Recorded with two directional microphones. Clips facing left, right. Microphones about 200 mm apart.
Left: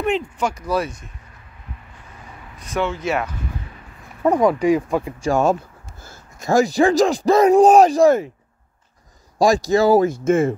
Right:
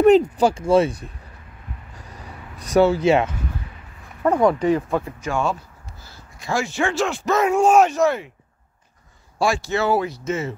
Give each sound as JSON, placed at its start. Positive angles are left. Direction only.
{"t": 0.0, "sound": "speech", "side_deg": -40}
{"t": 2.6, "sound": "speech", "side_deg": -40}
{"t": 4.2, "sound": "speech", "side_deg": 10}
{"t": 5.2, "sound": "speech", "side_deg": 40}
{"t": 9.4, "sound": "speech", "side_deg": 35}